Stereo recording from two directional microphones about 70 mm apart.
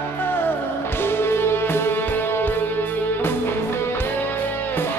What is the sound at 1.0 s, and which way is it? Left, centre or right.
Music, left.